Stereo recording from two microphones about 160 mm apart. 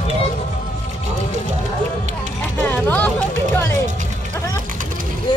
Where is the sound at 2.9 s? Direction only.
10° left (ahead or behind).